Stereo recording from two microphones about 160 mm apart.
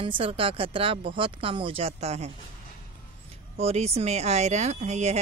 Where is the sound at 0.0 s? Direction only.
35° right (ahead or behind).